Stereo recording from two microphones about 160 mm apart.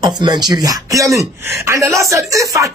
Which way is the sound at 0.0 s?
25° right (ahead or behind).